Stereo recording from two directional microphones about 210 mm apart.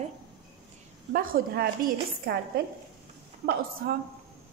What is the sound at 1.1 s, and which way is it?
Speech, 45° right (ahead or behind).